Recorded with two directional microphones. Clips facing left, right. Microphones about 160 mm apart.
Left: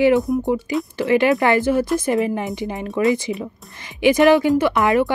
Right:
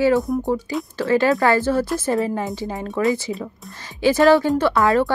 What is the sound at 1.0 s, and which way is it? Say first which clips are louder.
Speech: left 1 dB; 15° left (ahead or behind).